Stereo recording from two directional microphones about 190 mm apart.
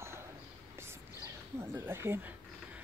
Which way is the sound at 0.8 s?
15° right (ahead or behind).